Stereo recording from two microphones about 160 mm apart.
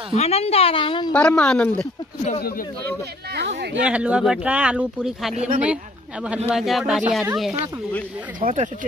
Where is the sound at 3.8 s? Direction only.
10° right (ahead or behind).